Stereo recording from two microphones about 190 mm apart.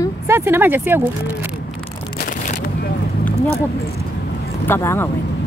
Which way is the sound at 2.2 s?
50° left (ahead or behind).